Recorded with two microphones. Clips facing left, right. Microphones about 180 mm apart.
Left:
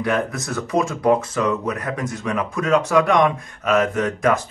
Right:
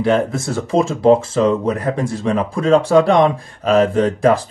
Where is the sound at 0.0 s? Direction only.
25° right (ahead or behind).